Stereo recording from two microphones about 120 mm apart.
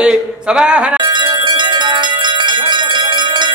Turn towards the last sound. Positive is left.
turn(degrees=-40)  # may be behind; listen again after turning